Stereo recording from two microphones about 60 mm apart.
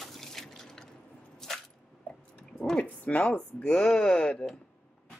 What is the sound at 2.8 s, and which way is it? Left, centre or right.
Speech, left.